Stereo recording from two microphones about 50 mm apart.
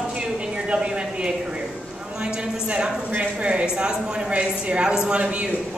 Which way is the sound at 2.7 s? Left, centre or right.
Right.